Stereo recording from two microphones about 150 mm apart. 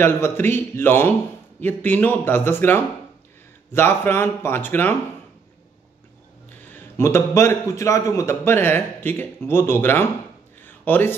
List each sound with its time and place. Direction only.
0.0 s a man's voice: 15° left (ahead or behind)
6.7 s a man's voice: 15° left (ahead or behind)
10.6 s a sound: 15° left (ahead or behind)